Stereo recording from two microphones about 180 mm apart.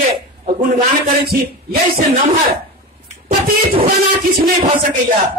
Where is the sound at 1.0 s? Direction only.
55° right (ahead or behind).